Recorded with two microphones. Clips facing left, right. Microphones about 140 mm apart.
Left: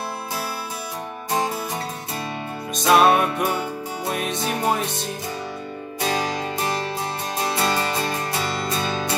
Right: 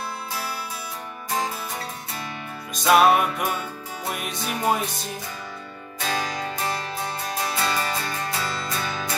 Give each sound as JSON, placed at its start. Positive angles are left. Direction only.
{"t": 2.7, "sound": "music", "side_deg": 0}
{"t": 5.9, "sound": "music", "side_deg": 25}
{"t": 7.3, "sound": "music", "side_deg": 25}